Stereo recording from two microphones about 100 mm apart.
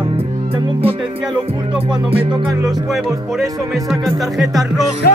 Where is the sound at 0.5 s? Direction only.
75° right (ahead or behind).